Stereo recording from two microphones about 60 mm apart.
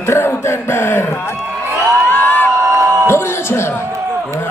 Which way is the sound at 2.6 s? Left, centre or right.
Right.